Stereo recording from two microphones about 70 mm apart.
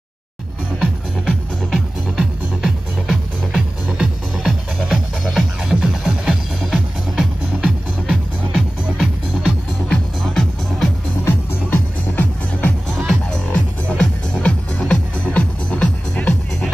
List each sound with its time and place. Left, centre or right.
0.7 s music: centre
2.6 s music: centre
9.8 s music: centre
11.2 s music: left
13.0 s music: centre